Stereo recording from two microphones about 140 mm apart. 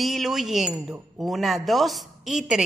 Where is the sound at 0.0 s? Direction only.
Centre (ahead or behind).